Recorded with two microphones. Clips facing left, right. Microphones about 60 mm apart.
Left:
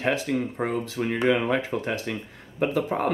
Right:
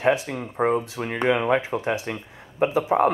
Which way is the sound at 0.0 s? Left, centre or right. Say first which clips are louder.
Right 3 dB; centre.